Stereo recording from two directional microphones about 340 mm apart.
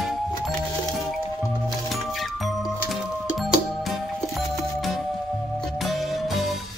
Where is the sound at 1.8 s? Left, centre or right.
Centre.